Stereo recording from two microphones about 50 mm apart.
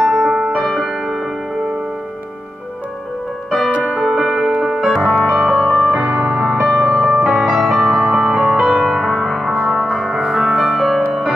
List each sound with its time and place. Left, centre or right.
0.0 s music: centre
0.7 s music: centre
4.0 s music: centre
6.1 s music: centre
6.4 s music: centre